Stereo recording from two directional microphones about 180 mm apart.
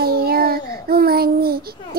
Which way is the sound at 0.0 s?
60° right (ahead or behind).